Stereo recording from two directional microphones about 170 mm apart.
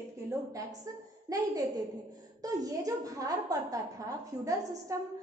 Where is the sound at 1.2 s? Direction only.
20° right (ahead or behind).